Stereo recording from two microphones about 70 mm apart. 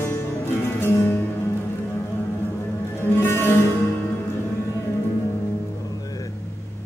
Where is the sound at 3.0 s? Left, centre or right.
Left.